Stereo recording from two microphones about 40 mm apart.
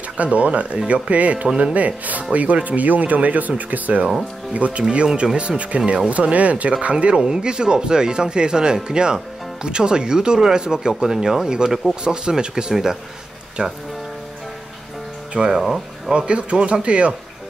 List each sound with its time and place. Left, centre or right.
0.2 s speech: right
15.3 s speech: centre